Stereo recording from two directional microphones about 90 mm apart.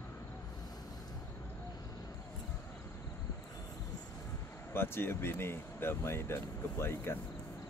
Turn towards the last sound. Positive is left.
turn(degrees=25)  # may be behind; listen again after turning